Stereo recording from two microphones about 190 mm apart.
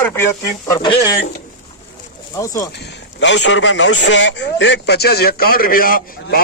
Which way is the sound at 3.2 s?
70° left (ahead or behind).